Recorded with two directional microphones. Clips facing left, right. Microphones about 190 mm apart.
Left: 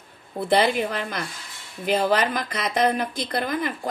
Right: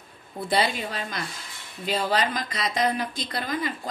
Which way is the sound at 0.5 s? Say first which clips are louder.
Left 5 dB; 55° left (ahead or behind).